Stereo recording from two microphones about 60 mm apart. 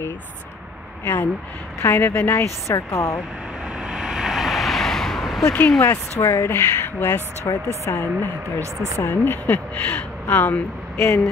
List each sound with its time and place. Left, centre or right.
1.0 s a woman's voice: left
3.8 s vehicle: centre
5.8 s speech: left
6.5 s speech: left
7.4 s speech: left
8.0 s speech: left
8.9 s speech: left